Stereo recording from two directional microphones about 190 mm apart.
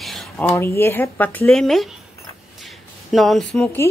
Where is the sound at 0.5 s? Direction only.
15° left (ahead or behind).